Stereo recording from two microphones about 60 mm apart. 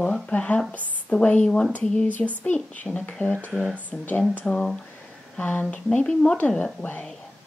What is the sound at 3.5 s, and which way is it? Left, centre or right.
Speech, centre.